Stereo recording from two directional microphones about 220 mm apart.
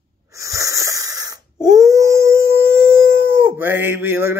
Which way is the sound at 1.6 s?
15° right (ahead or behind).